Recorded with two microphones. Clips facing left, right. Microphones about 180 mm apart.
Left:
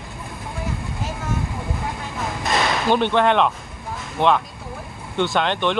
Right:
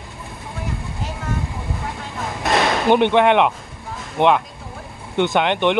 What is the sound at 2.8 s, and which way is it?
Speech, 20° right (ahead or behind).